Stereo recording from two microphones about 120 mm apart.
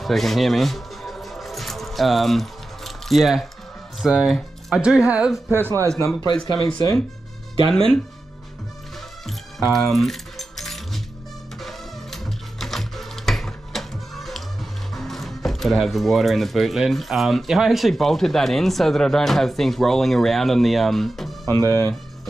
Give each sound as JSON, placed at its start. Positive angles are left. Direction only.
{"t": 0.0, "sound": "music", "side_deg": 0}
{"t": 4.0, "sound": "speech", "side_deg": -5}
{"t": 5.5, "sound": "speech", "side_deg": -20}
{"t": 6.3, "sound": "speech", "side_deg": -45}
{"t": 7.6, "sound": "speech", "side_deg": 5}
{"t": 9.7, "sound": "keys jangling", "side_deg": 0}
{"t": 11.6, "sound": "music", "side_deg": 0}
{"t": 15.0, "sound": "speech", "side_deg": 0}
{"t": 21.5, "sound": "speech", "side_deg": 25}